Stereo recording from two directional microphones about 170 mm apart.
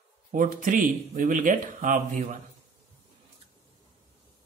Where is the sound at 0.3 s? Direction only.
55° right (ahead or behind).